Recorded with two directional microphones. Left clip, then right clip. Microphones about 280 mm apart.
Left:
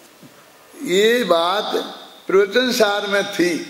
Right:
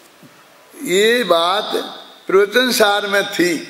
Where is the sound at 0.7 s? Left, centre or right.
Centre.